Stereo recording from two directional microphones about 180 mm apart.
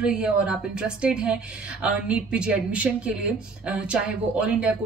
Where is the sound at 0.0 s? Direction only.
5° right (ahead or behind).